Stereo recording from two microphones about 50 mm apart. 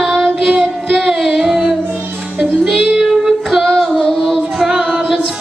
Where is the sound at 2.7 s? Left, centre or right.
Centre.